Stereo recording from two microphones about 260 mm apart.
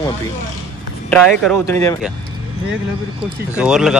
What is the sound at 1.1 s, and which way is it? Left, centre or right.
Speech, centre.